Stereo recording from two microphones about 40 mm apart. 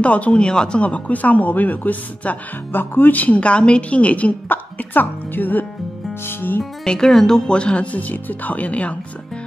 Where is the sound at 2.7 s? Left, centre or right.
Left.